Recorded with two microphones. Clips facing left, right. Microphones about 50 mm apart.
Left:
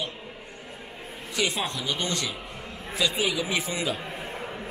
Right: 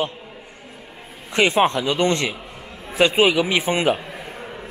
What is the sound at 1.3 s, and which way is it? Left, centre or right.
A man's voice, right.